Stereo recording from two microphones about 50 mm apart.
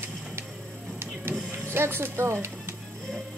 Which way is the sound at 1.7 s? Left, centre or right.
Right.